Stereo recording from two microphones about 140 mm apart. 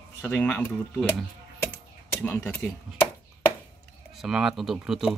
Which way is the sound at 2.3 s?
10° left (ahead or behind).